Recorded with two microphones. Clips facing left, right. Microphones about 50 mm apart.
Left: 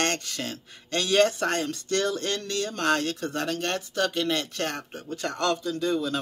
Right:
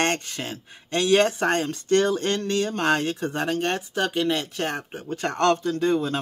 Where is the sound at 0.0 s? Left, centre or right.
Right.